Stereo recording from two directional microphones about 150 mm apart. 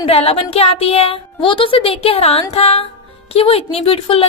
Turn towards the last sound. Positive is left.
turn(degrees=40)  # may be behind; listen again after turning